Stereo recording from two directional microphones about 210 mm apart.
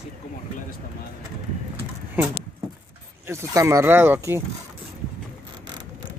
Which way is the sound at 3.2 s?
15° right (ahead or behind).